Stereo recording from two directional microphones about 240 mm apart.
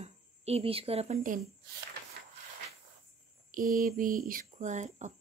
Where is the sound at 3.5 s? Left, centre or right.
Right.